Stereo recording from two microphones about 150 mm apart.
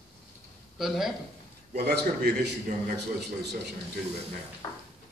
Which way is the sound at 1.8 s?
90° right.